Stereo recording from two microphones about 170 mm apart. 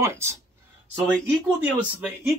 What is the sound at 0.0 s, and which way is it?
Speech, 15° right (ahead or behind).